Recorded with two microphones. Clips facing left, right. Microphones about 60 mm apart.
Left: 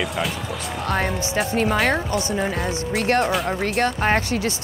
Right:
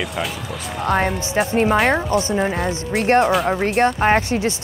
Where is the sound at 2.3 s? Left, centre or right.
Centre.